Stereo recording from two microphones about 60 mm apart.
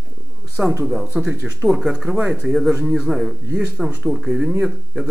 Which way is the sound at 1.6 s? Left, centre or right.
Centre.